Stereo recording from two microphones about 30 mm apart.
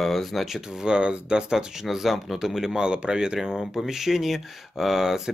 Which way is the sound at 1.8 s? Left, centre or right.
Centre.